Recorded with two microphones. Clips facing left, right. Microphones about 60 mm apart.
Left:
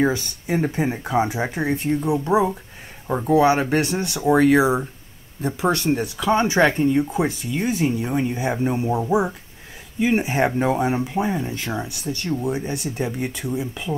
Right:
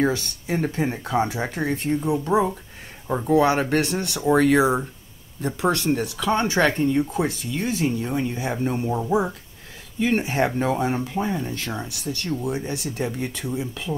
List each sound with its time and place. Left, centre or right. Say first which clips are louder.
0.0 s speech: left 2 dB; centre